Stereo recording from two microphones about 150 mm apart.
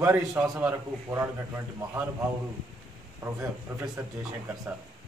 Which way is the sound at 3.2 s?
20° right (ahead or behind).